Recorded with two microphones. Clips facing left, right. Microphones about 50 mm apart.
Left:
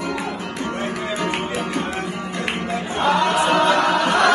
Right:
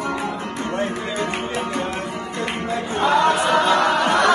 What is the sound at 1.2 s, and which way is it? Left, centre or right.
Music, left.